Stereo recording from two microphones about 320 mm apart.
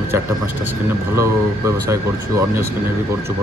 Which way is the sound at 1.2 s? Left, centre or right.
Centre.